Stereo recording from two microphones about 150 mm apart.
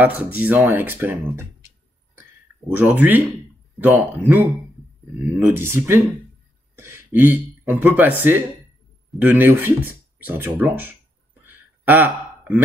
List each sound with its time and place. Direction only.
0.0 s speech: 10° right (ahead or behind)
2.7 s speech: 10° right (ahead or behind)
11.4 s a sound: 10° right (ahead or behind)